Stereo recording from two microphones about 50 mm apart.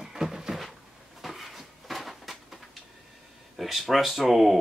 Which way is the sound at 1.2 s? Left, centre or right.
Centre.